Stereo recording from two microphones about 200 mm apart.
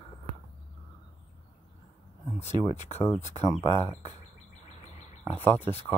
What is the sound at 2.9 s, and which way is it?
Speech, 35° left (ahead or behind).